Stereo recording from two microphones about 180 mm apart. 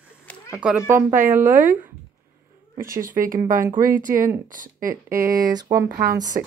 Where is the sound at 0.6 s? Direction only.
5° right (ahead or behind).